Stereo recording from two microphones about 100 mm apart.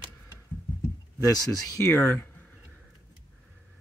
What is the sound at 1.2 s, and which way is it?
Speech, 40° left (ahead or behind).